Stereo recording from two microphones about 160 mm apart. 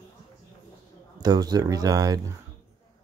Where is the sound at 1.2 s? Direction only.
25° right (ahead or behind).